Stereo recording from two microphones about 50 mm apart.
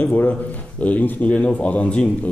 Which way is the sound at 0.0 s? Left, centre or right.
Left.